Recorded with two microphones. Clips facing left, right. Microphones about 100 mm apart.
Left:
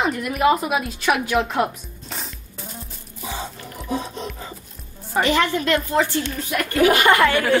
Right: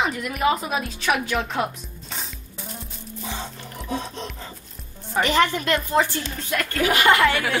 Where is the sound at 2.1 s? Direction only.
Centre (ahead or behind).